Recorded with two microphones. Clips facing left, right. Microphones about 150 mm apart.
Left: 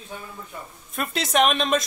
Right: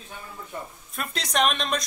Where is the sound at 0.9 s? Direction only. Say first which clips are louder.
Left 5 dB; centre (ahead or behind).